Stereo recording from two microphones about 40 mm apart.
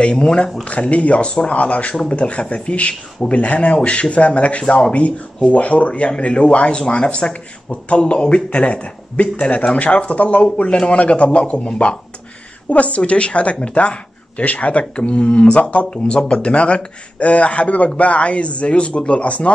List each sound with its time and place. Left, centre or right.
0.0 s a man's voice: left
0.7 s speech: left
1.6 s a man's voice: left